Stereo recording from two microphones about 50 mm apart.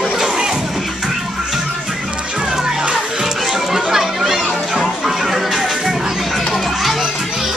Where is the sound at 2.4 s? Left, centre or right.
Centre.